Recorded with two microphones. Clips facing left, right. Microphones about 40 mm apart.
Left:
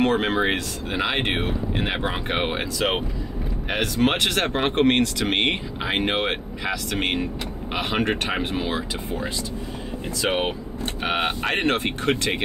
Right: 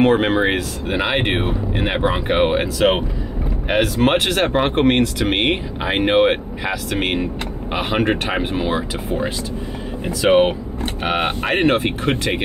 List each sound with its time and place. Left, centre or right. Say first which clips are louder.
0.0 s speech: right 5 dB; centre
10.2 s speech: right 10 dB; right
11.4 s speech: right 8 dB; centre